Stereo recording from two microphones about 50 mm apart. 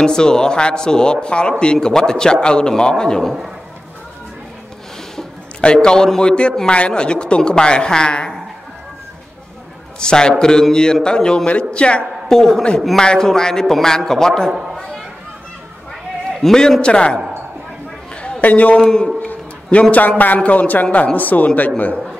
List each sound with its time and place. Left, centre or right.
0.0 s a man's voice: centre
5.6 s a man's voice: centre
9.9 s a man's voice: centre
12.3 s a man's voice: centre
16.3 s a man's voice: centre
18.1 s a sound: left
18.4 s a man's voice: left
18.8 s a man's voice: centre
19.2 s a man's voice: left